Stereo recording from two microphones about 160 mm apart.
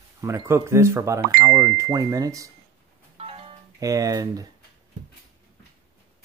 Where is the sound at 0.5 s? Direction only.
15° right (ahead or behind).